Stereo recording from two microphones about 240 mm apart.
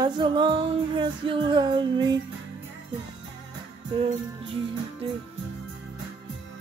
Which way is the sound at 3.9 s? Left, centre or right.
Right.